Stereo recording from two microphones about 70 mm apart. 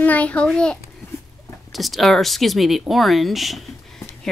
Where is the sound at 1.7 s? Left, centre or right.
Centre.